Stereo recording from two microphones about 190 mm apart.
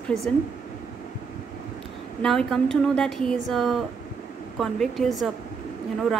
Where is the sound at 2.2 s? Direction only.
5° left (ahead or behind).